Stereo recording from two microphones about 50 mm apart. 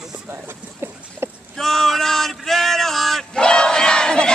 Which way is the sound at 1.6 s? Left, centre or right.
Centre.